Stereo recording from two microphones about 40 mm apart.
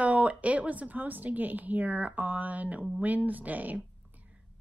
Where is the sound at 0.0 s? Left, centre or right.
Right.